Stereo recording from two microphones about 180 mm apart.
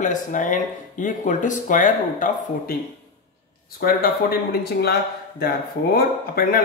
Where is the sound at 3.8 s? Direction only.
55° left (ahead or behind).